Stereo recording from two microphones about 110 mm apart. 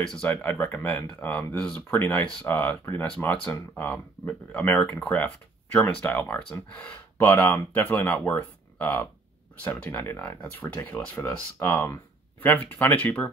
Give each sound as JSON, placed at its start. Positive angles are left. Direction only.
{"t": 0.0, "sound": "speech", "side_deg": 10}